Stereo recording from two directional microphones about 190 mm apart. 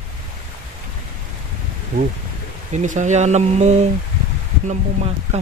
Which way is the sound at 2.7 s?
40° right (ahead or behind).